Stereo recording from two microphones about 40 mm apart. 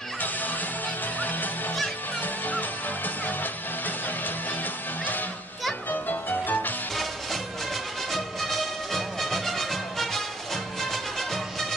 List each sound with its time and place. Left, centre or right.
0.2 s music: left
5.9 s music: left
7.0 s music: centre